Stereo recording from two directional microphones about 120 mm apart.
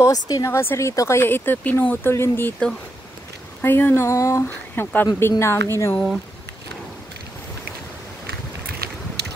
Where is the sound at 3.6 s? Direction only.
20° left (ahead or behind).